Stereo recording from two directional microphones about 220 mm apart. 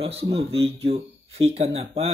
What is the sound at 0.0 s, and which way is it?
Speech, 25° right (ahead or behind).